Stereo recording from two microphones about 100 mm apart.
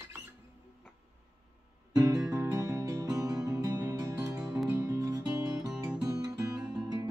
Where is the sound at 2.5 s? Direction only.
30° right (ahead or behind).